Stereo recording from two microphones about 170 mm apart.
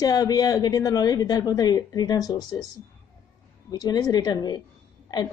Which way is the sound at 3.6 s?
25° left (ahead or behind).